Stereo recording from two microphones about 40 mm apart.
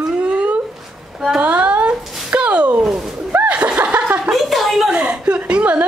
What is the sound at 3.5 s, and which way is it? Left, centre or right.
Snicker, right.